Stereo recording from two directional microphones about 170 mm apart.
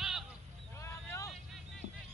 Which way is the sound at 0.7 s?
15° left (ahead or behind).